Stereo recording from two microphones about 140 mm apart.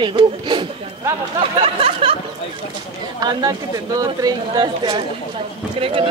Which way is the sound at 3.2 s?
30° right (ahead or behind).